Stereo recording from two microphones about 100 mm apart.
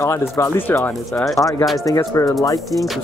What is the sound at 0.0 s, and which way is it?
Speech, 30° left (ahead or behind).